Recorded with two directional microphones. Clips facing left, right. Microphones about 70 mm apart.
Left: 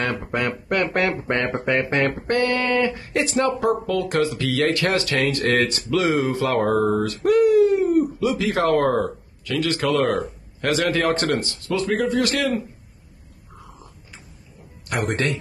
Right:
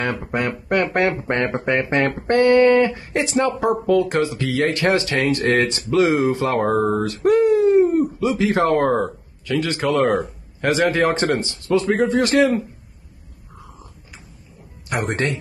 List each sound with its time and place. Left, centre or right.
0.3 s speech: right
14.9 s speech: right